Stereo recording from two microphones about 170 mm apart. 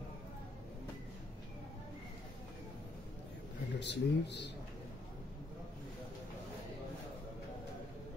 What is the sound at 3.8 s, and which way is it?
Speech, 90° left.